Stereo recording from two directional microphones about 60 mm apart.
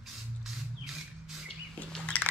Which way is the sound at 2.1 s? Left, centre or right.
Centre.